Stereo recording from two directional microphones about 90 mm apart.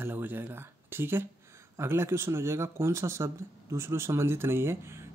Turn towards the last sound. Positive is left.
turn(degrees=-30)  # may be behind; listen again after turning